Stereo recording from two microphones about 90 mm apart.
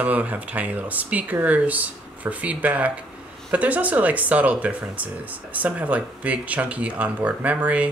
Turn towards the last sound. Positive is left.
turn(degrees=-15)  # may be behind; listen again after turning